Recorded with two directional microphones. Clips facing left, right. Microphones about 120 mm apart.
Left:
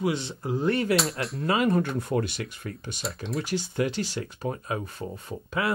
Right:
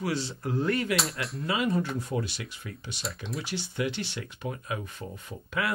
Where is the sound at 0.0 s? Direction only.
20° left (ahead or behind).